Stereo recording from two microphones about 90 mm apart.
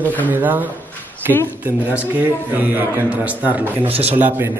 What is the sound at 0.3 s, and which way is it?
Speech, 20° right (ahead or behind).